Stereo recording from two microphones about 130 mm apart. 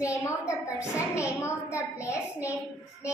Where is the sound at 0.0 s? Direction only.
25° left (ahead or behind).